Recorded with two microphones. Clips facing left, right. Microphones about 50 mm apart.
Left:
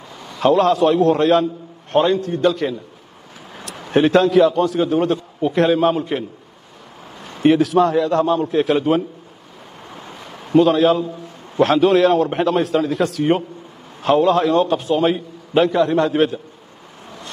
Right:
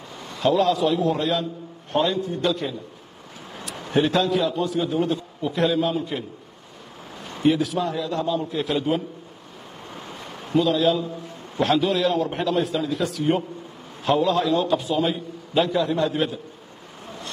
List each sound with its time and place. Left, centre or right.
0.4 s a man's voice: left
1.9 s a man's voice: left
3.9 s a man's voice: left
7.4 s a man's voice: left
10.7 s a man's voice: left